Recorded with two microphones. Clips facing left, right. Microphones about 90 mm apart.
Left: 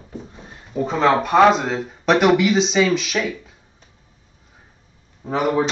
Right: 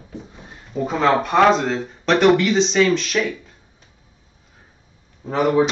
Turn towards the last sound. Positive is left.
turn(degrees=0)  # may be behind; listen again after turning